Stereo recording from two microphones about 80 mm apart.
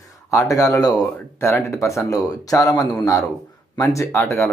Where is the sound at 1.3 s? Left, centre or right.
Left.